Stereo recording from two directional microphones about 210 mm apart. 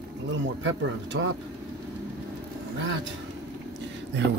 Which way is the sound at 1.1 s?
70° right (ahead or behind).